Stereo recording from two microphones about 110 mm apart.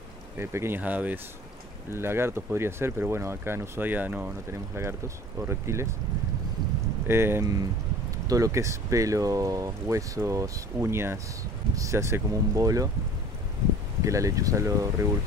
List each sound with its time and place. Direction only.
0.4 s speech: 25° right (ahead or behind)
7.1 s speech: 20° right (ahead or behind)
14.0 s speech: 30° right (ahead or behind)